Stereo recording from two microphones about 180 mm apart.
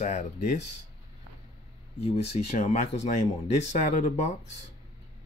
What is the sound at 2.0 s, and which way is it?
Speech, 35° left (ahead or behind).